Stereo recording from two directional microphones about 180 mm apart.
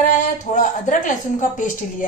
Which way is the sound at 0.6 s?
45° left (ahead or behind).